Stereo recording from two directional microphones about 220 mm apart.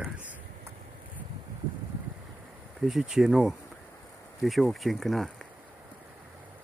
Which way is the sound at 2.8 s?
Centre (ahead or behind).